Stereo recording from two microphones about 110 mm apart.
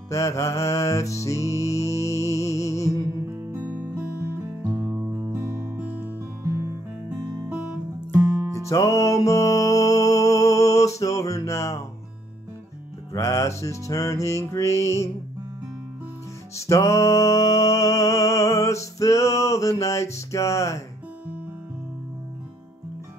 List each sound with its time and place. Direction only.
0.1 s music: 25° left (ahead or behind)
3.3 s music: 30° right (ahead or behind); by 6.0 s 15° right (ahead or behind)
6.4 s music: 25° right (ahead or behind)
8.5 s music: 25° left (ahead or behind)
13.1 s music: 25° left (ahead or behind)
16.5 s music: 25° left (ahead or behind)